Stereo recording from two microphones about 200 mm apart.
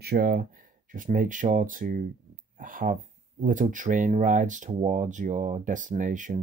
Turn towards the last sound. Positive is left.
turn(degrees=-40)  # may be behind; listen again after turning